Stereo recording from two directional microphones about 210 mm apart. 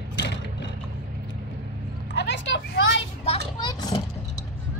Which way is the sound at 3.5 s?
20° left (ahead or behind).